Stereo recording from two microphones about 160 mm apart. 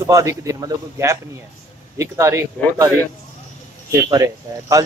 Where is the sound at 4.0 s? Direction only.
20° right (ahead or behind).